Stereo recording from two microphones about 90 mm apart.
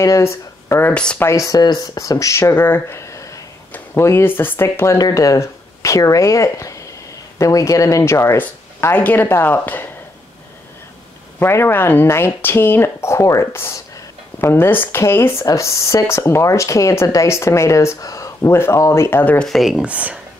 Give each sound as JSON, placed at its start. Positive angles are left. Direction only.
{"t": 0.0, "sound": "speech", "side_deg": 35}
{"t": 0.8, "sound": "speech", "side_deg": 10}
{"t": 1.2, "sound": "speech", "side_deg": 40}
{"t": 11.3, "sound": "speech", "side_deg": 25}
{"t": 19.2, "sound": "speech", "side_deg": 15}
{"t": 19.5, "sound": "speech", "side_deg": 0}
{"t": 19.8, "sound": "speech", "side_deg": -15}